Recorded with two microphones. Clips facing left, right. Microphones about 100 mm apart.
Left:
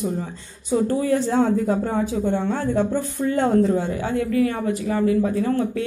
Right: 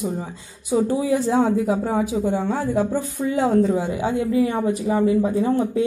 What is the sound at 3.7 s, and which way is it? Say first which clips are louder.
Speech: right 1 dB; 15° right (ahead or behind).